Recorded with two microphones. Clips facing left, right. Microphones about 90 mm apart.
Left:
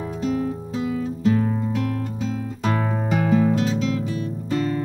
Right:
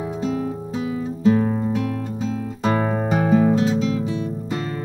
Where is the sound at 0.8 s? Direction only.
15° right (ahead or behind).